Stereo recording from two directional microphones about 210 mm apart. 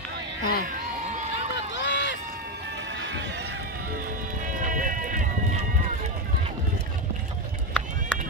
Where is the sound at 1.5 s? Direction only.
55° left (ahead or behind).